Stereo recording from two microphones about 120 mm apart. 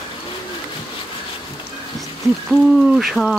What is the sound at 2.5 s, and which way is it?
Speech, centre (ahead or behind).